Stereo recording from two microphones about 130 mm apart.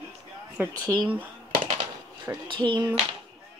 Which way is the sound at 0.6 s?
15° right (ahead or behind).